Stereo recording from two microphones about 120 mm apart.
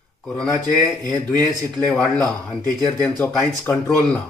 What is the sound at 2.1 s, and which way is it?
Speech, 5° left (ahead or behind).